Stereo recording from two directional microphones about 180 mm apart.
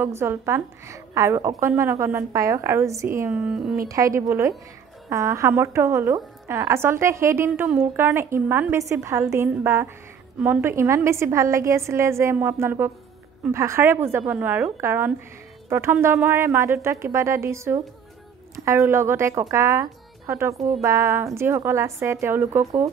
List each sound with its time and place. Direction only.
0.0 s a woman's voice: 15° right (ahead or behind)
3.9 s a woman's voice: 15° right (ahead or behind)